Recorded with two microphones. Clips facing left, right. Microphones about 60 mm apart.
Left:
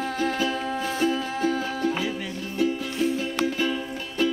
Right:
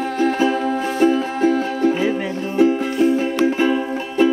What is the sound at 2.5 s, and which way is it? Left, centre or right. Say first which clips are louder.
Music: right 9 dB; right.